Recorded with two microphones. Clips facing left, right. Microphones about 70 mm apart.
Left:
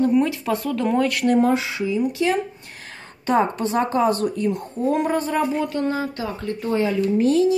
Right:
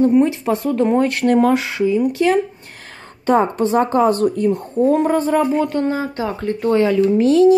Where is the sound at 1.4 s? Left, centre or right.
Right.